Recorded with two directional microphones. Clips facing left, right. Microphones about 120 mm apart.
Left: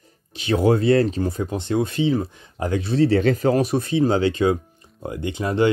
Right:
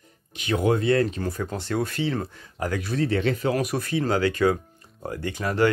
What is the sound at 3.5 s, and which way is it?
Speech, 25° left (ahead or behind).